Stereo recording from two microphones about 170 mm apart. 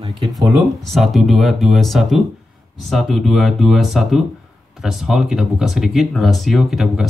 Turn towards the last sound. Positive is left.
turn(degrees=0)  # may be behind; listen again after turning